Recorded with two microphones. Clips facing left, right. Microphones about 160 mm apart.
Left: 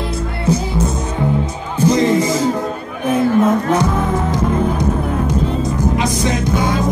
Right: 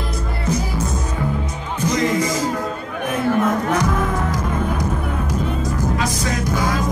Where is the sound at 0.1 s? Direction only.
30° left (ahead or behind).